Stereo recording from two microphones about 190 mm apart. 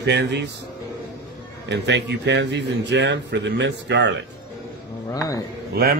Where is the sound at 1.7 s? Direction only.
65° right (ahead or behind).